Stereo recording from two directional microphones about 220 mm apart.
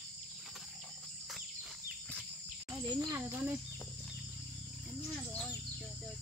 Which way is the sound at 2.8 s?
15° right (ahead or behind).